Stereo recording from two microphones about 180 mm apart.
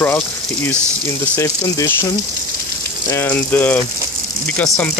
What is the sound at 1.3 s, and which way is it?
Speech, 15° left (ahead or behind).